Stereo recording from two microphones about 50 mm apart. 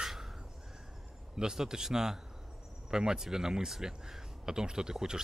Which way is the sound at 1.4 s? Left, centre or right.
Centre.